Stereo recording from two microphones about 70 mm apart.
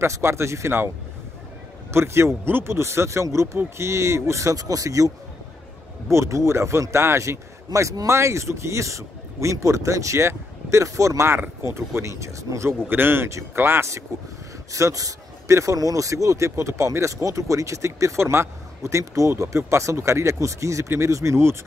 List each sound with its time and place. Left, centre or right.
0.0 s speech: right
1.9 s speech: right
6.0 s speech: right
12.8 s speech: right
13.3 s speech: right
14.7 s speech: right